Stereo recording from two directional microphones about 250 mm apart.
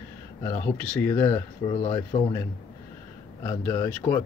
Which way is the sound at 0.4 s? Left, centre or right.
Centre.